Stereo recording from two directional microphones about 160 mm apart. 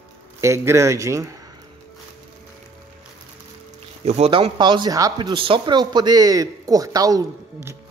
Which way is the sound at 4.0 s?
40° right (ahead or behind).